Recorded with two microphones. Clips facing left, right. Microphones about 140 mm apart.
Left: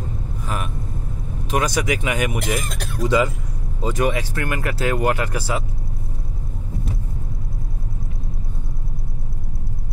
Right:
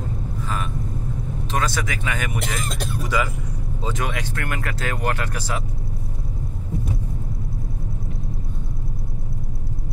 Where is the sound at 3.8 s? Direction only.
10° left (ahead or behind).